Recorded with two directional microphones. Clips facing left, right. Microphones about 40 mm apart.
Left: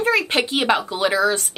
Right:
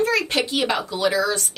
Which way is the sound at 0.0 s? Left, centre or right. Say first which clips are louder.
Left 2 dB; left.